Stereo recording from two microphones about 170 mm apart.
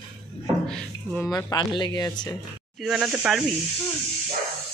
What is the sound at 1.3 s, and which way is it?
Speech, 20° left (ahead or behind).